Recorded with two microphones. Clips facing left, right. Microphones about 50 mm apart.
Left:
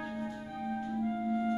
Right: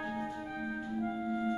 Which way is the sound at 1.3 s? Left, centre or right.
Centre.